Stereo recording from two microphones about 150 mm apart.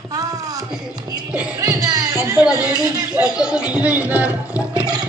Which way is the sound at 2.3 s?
10° right (ahead or behind).